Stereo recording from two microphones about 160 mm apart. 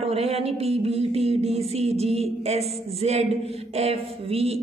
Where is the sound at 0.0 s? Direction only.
40° right (ahead or behind).